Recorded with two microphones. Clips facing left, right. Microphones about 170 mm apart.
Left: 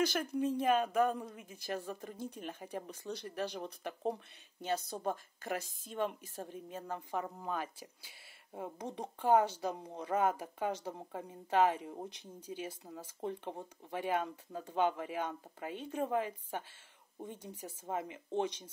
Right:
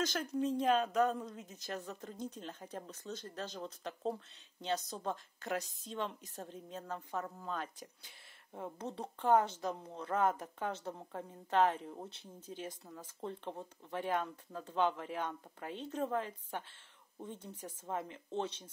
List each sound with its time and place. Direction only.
0.0 s speech: 10° left (ahead or behind)
5.6 s a woman's voice: 50° left (ahead or behind)
5.9 s speech: 10° left (ahead or behind)